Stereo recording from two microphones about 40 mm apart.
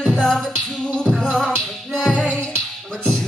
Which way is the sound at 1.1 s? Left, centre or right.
Left.